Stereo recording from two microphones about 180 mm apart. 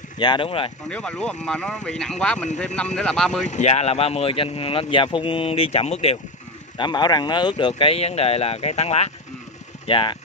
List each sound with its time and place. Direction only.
0.2 s speech: 25° left (ahead or behind)
0.8 s speech: 5° left (ahead or behind)
3.4 s speech: 40° left (ahead or behind)
6.8 s speech: 25° left (ahead or behind)